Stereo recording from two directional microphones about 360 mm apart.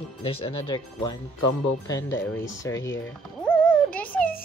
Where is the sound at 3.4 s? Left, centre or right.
Centre.